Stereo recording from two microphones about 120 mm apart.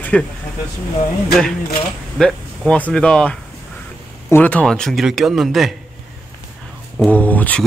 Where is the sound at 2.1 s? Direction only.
5° left (ahead or behind).